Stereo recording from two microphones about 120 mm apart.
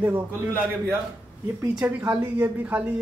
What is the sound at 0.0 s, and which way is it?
A man's voice, 20° right (ahead or behind).